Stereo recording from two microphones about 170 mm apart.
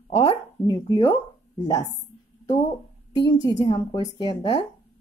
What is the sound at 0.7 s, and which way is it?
Speech, 25° left (ahead or behind).